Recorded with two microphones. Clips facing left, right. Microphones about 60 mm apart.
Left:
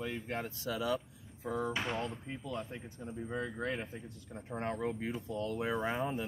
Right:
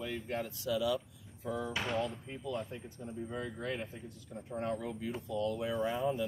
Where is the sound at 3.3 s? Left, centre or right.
Left.